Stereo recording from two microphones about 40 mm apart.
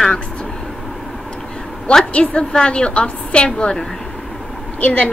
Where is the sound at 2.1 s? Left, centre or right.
Left.